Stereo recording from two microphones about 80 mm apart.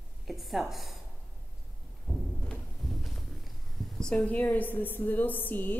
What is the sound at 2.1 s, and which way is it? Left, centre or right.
Speech, left.